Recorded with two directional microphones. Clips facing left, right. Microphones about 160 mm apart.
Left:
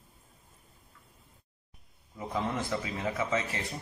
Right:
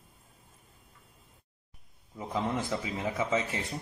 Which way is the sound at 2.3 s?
15° right (ahead or behind).